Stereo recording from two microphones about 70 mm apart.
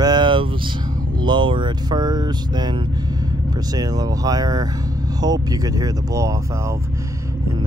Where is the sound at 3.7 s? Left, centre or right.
Right.